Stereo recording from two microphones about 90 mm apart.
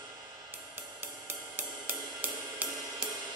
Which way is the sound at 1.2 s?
20° right (ahead or behind).